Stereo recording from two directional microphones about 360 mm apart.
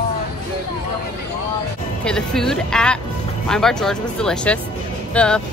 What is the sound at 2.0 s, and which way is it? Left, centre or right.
Speech, centre.